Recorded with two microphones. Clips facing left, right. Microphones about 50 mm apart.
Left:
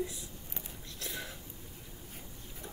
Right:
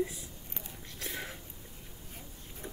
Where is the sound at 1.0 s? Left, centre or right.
Right.